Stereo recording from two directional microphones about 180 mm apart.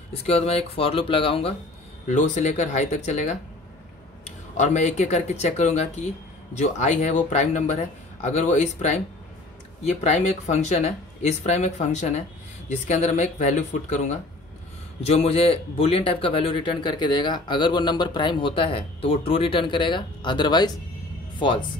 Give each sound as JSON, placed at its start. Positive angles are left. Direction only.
{"t": 0.1, "sound": "speech", "side_deg": 35}
{"t": 2.0, "sound": "speech", "side_deg": 40}
{"t": 4.6, "sound": "speech", "side_deg": 40}